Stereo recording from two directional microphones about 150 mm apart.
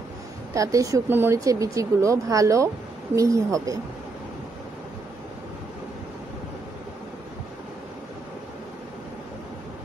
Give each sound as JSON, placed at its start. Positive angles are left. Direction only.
{"t": 0.6, "sound": "speech", "side_deg": -20}